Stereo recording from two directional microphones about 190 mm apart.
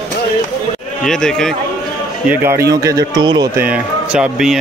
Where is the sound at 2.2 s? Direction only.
10° right (ahead or behind).